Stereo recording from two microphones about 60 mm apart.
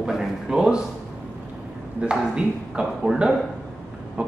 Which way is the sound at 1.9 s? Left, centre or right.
Centre.